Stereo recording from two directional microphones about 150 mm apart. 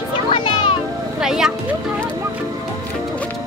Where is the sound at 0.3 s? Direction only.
35° left (ahead or behind).